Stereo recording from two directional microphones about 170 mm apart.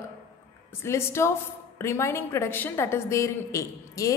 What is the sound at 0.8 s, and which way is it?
A woman's voice, 15° left (ahead or behind).